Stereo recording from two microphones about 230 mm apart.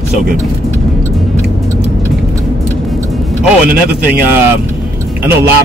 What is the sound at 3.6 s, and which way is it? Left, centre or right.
Speech, right.